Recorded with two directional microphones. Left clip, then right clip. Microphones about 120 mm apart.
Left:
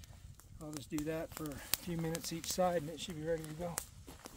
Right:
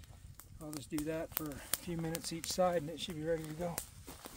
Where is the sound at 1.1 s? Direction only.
60° left (ahead or behind).